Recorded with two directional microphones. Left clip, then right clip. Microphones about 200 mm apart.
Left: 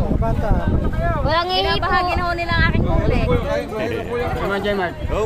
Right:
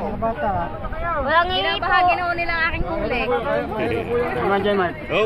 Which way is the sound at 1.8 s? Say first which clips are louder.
Right 2 dB; 15° right (ahead or behind).